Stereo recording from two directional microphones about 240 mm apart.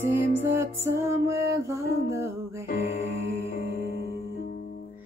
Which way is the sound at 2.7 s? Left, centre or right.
Left.